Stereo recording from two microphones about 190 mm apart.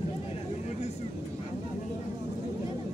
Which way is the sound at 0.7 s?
35° left (ahead or behind).